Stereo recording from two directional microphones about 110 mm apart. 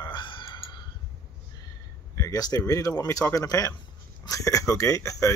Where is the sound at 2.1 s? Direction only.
30° left (ahead or behind).